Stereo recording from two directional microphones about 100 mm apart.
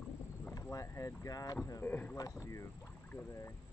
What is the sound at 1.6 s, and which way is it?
Speech, 20° left (ahead or behind).